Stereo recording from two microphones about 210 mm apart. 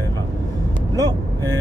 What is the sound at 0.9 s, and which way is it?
Speech, 15° right (ahead or behind).